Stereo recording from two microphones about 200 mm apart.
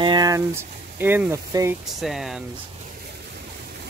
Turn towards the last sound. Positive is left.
turn(degrees=0)  # may be behind; listen again after turning